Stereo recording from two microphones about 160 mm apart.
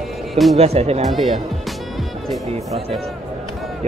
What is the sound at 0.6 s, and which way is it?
Speech, 40° right (ahead or behind).